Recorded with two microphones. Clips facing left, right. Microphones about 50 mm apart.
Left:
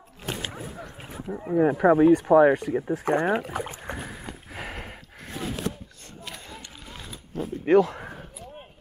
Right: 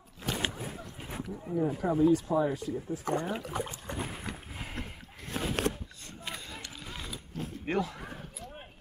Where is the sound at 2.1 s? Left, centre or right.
Left.